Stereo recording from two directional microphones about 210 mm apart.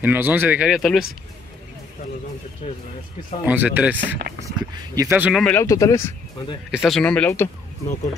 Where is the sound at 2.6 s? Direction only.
30° left (ahead or behind).